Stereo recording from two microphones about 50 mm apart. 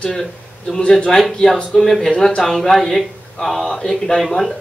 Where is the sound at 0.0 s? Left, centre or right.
Centre.